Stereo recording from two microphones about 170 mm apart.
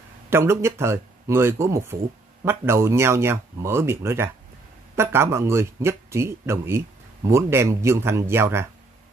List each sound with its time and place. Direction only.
0.3 s speech: 15° right (ahead or behind)